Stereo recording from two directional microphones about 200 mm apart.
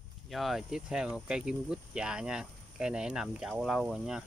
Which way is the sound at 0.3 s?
Centre (ahead or behind).